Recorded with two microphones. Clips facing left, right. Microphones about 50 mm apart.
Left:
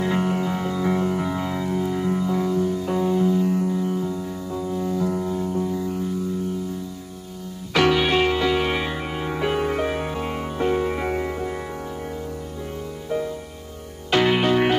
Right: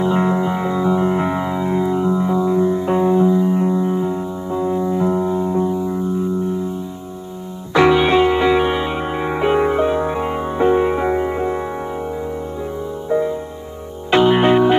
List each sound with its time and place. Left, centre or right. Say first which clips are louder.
0.0 s music: right 6 dB; right
7.7 s music: right 6 dB; right
10.1 s music: right 7 dB; centre
13.1 s music: right 8 dB; right